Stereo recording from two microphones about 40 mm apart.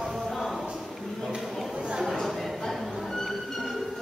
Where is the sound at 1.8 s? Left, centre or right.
Right.